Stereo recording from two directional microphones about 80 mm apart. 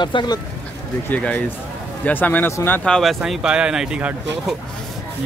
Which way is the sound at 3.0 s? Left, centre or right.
Centre.